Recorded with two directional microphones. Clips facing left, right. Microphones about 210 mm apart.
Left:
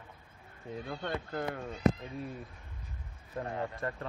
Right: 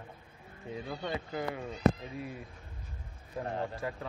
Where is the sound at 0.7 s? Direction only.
5° right (ahead or behind).